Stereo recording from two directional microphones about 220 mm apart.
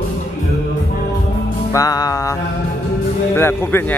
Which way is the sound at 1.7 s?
15° left (ahead or behind).